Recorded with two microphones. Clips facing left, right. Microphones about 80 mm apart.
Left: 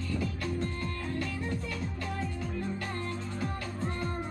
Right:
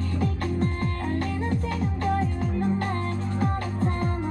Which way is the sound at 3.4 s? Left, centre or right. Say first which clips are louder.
Right 11 dB; right.